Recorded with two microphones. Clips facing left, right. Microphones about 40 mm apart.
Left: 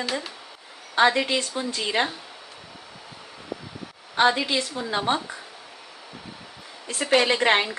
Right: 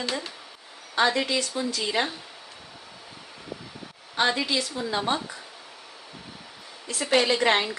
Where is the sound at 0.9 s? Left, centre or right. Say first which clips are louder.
Left 3 dB; left.